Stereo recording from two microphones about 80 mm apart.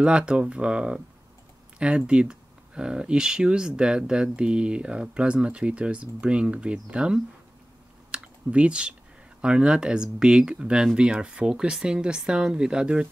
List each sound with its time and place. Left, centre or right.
0.0 s speech: centre
8.1 s typing: centre
9.4 s speech: centre